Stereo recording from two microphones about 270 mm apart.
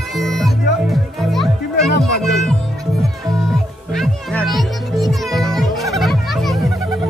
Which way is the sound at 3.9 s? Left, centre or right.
Centre.